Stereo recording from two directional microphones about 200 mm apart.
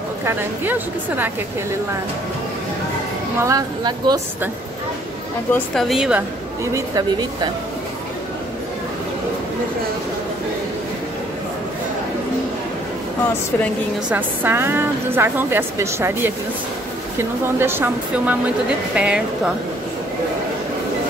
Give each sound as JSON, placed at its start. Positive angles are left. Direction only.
{"t": 0.2, "sound": "a woman's voice", "side_deg": -10}
{"t": 3.3, "sound": "a woman's voice", "side_deg": -15}
{"t": 5.5, "sound": "a woman's voice", "side_deg": 0}
{"t": 6.6, "sound": "a woman's voice", "side_deg": -15}
{"t": 14.1, "sound": "a woman's voice", "side_deg": -10}